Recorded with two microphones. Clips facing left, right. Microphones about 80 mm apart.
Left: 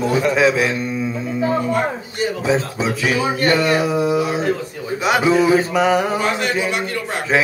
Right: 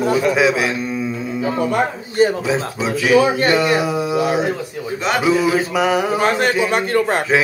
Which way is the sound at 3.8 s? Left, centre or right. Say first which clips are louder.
Left 1 dB; centre.